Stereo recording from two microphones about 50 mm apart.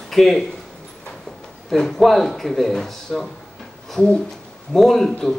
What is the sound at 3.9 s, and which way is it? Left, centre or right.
Speech, centre.